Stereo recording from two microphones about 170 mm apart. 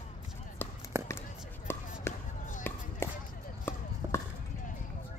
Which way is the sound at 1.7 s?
15° left (ahead or behind).